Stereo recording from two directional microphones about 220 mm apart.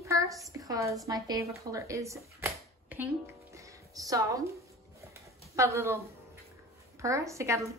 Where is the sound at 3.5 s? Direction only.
15° right (ahead or behind).